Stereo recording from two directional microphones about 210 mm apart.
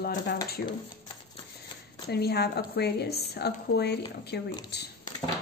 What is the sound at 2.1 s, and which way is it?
Speech, 50° left (ahead or behind).